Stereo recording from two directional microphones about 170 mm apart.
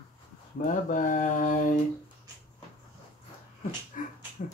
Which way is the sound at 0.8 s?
50° left (ahead or behind).